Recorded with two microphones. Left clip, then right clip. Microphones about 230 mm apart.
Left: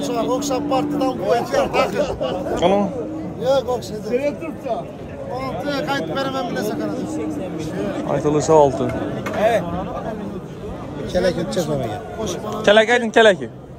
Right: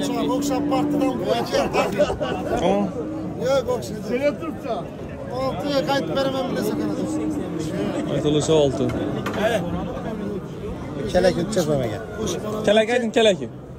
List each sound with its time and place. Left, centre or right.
0.0 s speech: centre
2.6 s a man's voice: centre
4.1 s speech: centre
11.1 s speech: centre
12.6 s a man's voice: centre